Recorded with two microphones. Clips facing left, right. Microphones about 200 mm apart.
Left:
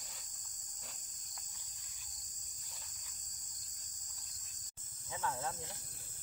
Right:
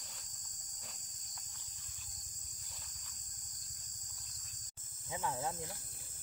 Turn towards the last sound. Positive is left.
turn(degrees=-15)  # may be behind; listen again after turning